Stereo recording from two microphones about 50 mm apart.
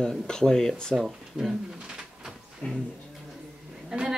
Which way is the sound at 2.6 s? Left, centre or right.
Left.